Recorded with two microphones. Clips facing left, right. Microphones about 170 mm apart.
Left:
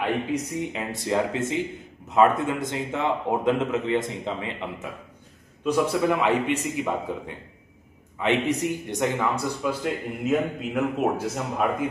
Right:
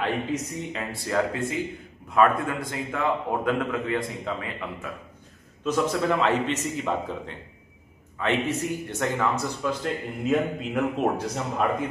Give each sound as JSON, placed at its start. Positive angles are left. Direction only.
{"t": 0.0, "sound": "a man's voice", "side_deg": 15}
{"t": 5.6, "sound": "a man's voice", "side_deg": 10}